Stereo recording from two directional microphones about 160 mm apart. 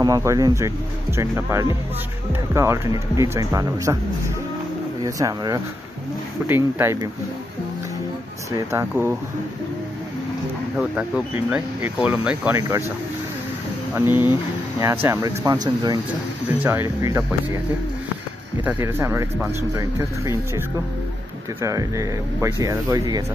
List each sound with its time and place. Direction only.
0.0 s speech: 20° right (ahead or behind)
5.0 s speech: 20° right (ahead or behind)
10.8 s speech: 5° right (ahead or behind)
13.9 s speech: 15° right (ahead or behind)
18.6 s speech: 15° right (ahead or behind)